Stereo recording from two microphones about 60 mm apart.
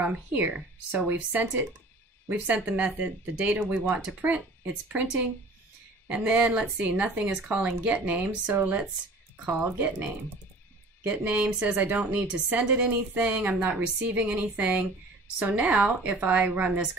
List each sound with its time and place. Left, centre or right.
0.3 s speech: right
3.5 s speech: right
6.0 s speech: centre
11.1 s speech: right